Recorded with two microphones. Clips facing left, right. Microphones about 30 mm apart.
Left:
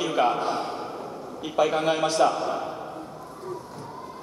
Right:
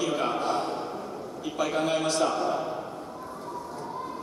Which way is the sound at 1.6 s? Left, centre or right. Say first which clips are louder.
Left 4 dB; left.